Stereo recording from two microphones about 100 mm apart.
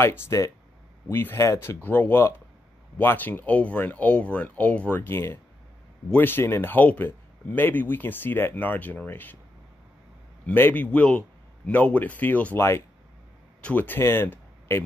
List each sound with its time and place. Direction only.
0.0 s speech: 30° left (ahead or behind)
10.4 s speech: 20° left (ahead or behind)
13.6 s speech: 15° left (ahead or behind)